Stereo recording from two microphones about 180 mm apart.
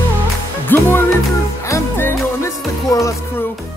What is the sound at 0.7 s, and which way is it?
Music, 10° left (ahead or behind).